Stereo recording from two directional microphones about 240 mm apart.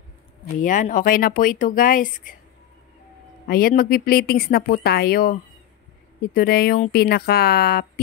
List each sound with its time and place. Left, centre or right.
0.6 s speech: left
3.4 s speech: left